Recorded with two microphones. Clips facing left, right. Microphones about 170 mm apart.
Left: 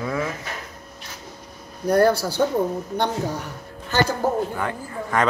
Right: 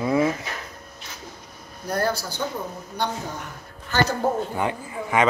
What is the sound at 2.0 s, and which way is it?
Speech, 70° left (ahead or behind).